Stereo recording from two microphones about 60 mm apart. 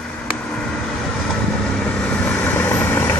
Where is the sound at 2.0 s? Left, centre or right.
Left.